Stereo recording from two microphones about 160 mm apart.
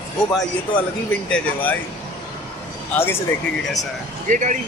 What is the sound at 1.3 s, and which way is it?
Speech, 10° left (ahead or behind).